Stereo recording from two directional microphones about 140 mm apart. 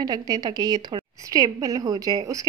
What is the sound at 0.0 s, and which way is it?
A woman's voice, 30° right (ahead or behind).